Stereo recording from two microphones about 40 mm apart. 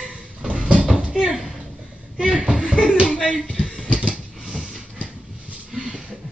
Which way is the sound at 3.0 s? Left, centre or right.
Centre.